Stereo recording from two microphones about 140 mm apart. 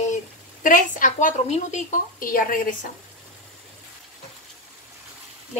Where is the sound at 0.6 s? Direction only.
70° left (ahead or behind).